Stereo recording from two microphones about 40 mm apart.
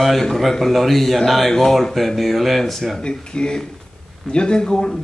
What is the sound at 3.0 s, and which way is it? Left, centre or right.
Speech, left.